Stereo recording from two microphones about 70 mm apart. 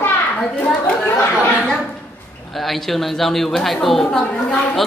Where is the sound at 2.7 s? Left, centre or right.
Centre.